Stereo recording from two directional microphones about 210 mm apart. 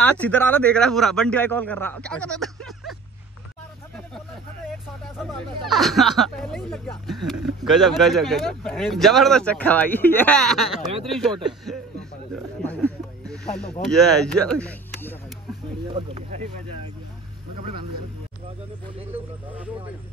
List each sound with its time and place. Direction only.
0.0 s speech: 10° left (ahead or behind)
5.3 s speech: centre (ahead or behind)
13.3 s snake: 5° left (ahead or behind)
14.2 s speech: 5° left (ahead or behind)
15.9 s speech: 30° right (ahead or behind)